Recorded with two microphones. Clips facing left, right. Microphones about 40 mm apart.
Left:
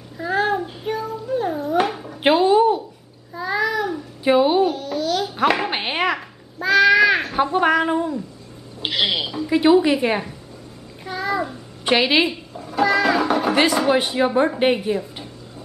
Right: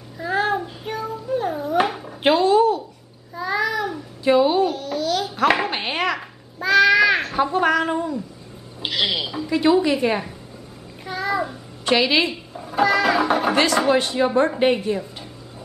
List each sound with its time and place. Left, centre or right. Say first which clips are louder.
0.2 s cat: left 1 dB; centre
2.2 s a sound: left 1 dB; centre
3.3 s babbling: left 1 dB; centre
4.2 s music: left 1 dB; centre
4.6 s babbling: left 1 dB; centre
5.7 s a sound: left 1 dB; centre
7.5 s a woman's voice: left 2 dB; centre
11.1 s a sound: even; centre
11.8 s a woman's voice: left 1 dB; centre
12.5 s speech: even; centre
13.8 s a woman's voice: even; centre